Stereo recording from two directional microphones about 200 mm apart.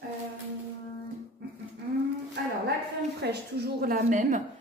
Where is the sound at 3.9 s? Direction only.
40° right (ahead or behind).